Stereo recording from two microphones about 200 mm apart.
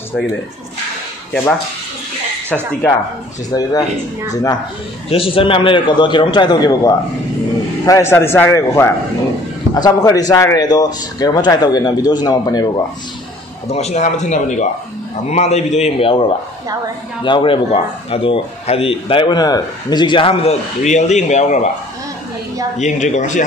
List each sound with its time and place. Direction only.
2.5 s speech: 5° left (ahead or behind)
3.5 s speech: 20° left (ahead or behind)
5.1 s speech: 25° left (ahead or behind)
13.7 s speech: 30° left (ahead or behind)
22.8 s speech: 35° left (ahead or behind)